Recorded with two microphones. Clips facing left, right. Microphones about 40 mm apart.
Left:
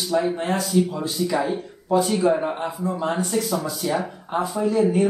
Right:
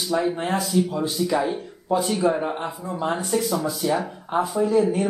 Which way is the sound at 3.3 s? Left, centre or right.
Centre.